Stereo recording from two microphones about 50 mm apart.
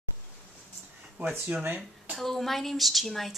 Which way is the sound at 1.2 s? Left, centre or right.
Right.